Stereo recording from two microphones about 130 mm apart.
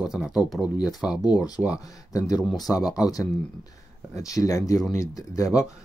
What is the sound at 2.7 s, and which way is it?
Speech, 10° left (ahead or behind).